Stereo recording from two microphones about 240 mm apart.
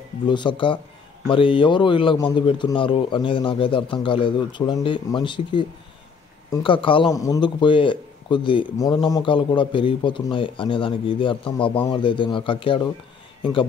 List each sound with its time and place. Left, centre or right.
0.3 s a man's voice: centre